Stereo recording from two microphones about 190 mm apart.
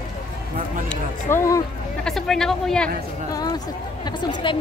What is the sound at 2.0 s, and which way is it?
Speech, centre (ahead or behind).